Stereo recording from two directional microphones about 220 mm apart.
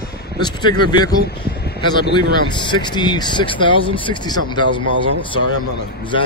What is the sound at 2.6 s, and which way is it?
Speech, 20° left (ahead or behind).